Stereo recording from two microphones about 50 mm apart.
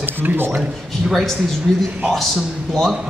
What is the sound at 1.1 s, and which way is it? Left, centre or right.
Speech, centre.